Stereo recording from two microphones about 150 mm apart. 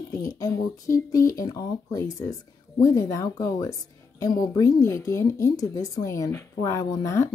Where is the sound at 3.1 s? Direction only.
20° left (ahead or behind).